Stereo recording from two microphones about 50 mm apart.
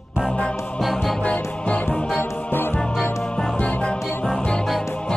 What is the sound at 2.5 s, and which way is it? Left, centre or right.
Music, left.